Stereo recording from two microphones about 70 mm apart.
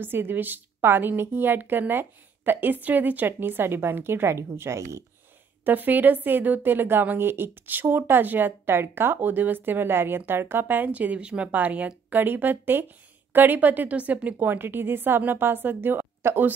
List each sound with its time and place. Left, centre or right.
0.0 s a woman's voice: right
5.6 s a woman's voice: right